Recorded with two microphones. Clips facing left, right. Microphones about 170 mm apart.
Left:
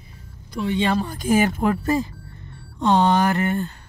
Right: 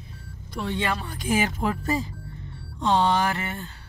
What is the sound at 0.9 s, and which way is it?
Speech, 40° left (ahead or behind).